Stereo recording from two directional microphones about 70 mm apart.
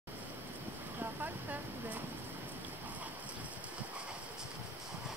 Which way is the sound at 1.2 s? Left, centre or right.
Right.